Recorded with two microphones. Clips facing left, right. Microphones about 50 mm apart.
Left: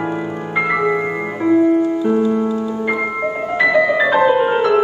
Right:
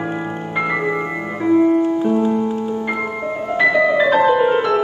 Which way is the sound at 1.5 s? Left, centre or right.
Right.